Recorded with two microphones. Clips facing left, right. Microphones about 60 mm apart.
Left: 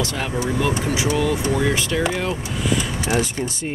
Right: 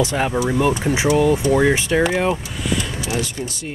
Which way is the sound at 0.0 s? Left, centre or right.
Right.